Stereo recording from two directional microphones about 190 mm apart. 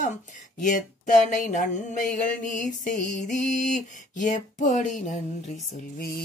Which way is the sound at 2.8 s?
45° left (ahead or behind).